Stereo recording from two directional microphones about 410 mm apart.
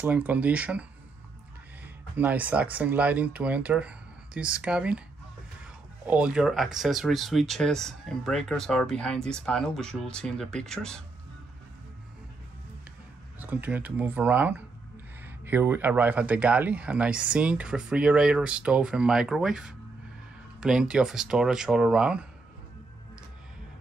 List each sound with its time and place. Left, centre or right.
0.0 s speech: centre
2.1 s speech: centre
6.0 s speech: centre
13.4 s speech: centre